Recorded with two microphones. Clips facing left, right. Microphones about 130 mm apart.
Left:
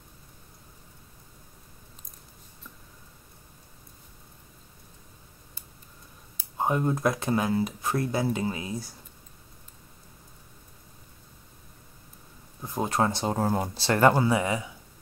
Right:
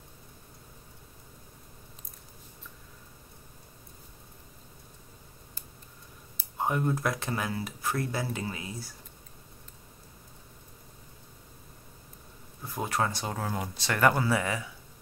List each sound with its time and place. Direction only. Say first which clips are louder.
6.6 s speech: left 3 dB; 25° left (ahead or behind)
12.6 s speech: left 4 dB; 25° left (ahead or behind)